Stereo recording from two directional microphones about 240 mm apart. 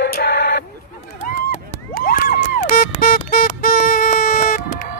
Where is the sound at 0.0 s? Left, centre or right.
Left.